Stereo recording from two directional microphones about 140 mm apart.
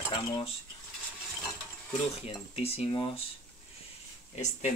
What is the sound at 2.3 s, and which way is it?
Speech, 45° left (ahead or behind).